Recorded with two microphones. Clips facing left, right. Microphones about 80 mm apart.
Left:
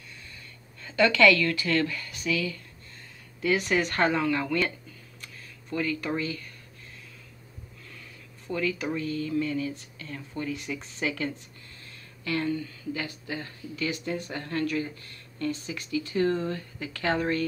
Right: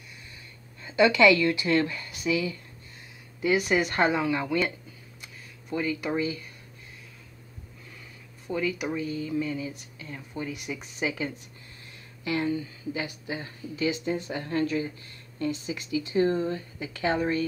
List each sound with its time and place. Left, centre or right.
0.8 s a woman's voice: centre
5.2 s a sound: centre
8.5 s a woman's voice: centre